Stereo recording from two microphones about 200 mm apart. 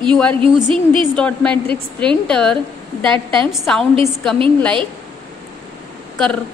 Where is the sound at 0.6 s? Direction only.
25° right (ahead or behind).